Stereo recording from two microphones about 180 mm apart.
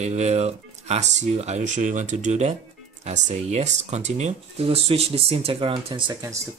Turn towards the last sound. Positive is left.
turn(degrees=-20)  # may be behind; listen again after turning